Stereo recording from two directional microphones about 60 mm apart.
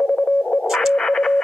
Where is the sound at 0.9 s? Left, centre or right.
Centre.